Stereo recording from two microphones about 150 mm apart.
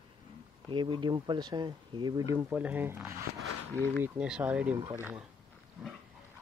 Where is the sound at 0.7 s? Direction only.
35° right (ahead or behind).